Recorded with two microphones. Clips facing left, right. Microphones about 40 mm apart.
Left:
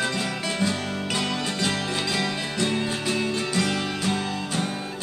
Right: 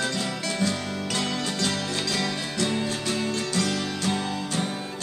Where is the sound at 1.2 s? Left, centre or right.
Centre.